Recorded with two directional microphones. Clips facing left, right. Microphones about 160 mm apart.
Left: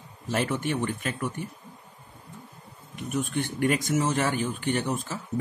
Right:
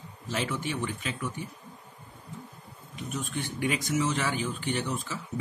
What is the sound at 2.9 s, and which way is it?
Speech, 55° left (ahead or behind).